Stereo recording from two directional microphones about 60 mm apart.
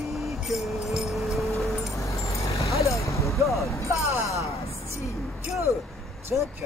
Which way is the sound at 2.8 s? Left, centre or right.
Left.